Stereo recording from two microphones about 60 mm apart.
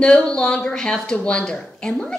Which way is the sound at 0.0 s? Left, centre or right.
Centre.